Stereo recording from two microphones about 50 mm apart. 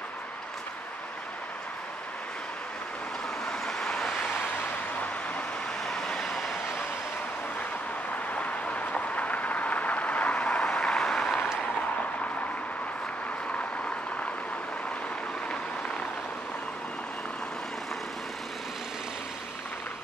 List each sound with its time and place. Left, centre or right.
3.4 s vehicle: centre
5.9 s vehicle: centre
8.3 s vehicle: left; by 11.4 s centre